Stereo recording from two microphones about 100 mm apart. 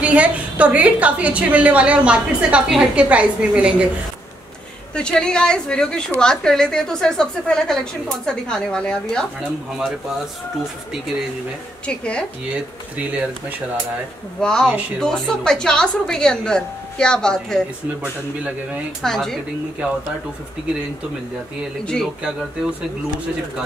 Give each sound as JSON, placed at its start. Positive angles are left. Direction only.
{"t": 0.0, "sound": "a woman's voice", "side_deg": -15}
{"t": 4.9, "sound": "a woman's voice", "side_deg": 10}
{"t": 9.8, "sound": "a woman's voice", "side_deg": -5}
{"t": 11.8, "sound": "a woman's voice", "side_deg": 10}
{"t": 12.9, "sound": "a woman's voice", "side_deg": -15}
{"t": 14.4, "sound": "a woman's voice", "side_deg": 5}
{"t": 18.0, "sound": "a woman's voice", "side_deg": -15}
{"t": 19.0, "sound": "a woman's voice", "side_deg": 5}